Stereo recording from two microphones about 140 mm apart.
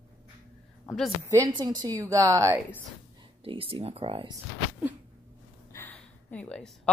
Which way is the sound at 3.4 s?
40° right (ahead or behind).